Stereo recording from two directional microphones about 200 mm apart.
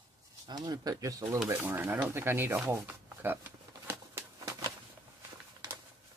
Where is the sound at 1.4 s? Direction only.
10° right (ahead or behind).